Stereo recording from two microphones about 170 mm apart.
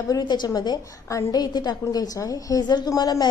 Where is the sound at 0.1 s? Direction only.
25° left (ahead or behind).